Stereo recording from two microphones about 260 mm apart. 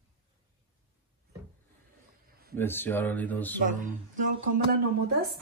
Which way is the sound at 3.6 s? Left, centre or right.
Right.